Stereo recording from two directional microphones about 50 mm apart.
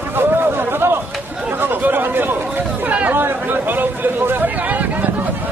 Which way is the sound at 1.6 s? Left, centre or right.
Right.